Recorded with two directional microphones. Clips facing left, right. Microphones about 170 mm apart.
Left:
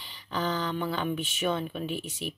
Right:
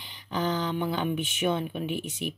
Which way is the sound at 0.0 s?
15° right (ahead or behind).